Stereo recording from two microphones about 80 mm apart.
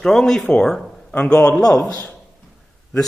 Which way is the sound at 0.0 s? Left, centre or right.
Centre.